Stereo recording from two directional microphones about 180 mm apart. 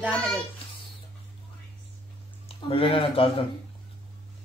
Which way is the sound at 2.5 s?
30° left (ahead or behind).